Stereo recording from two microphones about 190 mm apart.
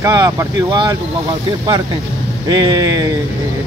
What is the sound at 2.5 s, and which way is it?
Speech, 20° right (ahead or behind).